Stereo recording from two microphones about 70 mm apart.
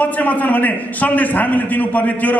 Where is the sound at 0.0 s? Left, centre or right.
Left.